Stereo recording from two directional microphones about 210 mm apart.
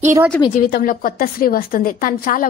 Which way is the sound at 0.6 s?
40° left (ahead or behind).